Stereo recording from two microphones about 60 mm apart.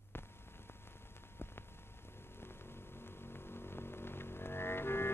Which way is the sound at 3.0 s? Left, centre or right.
Left.